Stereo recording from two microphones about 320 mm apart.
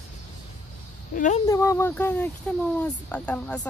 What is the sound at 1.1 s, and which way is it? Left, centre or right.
Speech, left.